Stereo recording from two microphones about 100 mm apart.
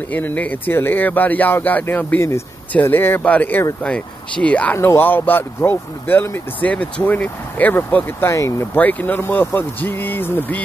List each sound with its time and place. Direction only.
0.1 s speech: 15° left (ahead or behind)
8.7 s speech: 15° left (ahead or behind)